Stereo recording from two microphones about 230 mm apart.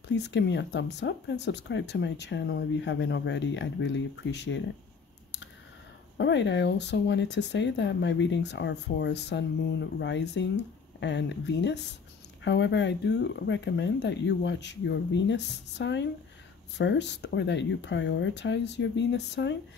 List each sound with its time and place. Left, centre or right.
0.1 s speech: left
6.1 s speech: left